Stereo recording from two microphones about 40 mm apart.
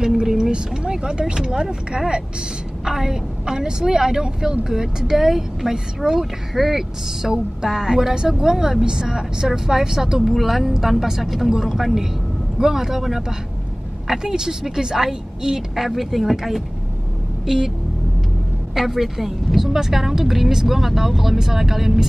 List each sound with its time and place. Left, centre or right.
0.0 s speech: centre
2.8 s a woman's voice: centre
17.5 s a woman's voice: centre
18.8 s a woman's voice: centre